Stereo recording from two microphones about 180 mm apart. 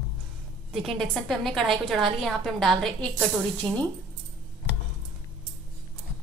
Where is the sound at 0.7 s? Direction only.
Centre (ahead or behind).